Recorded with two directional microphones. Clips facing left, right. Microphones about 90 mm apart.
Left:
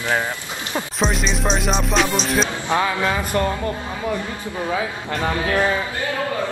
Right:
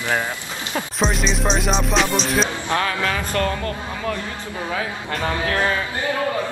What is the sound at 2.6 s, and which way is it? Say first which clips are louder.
Speech: left 2 dB; 15° left (ahead or behind).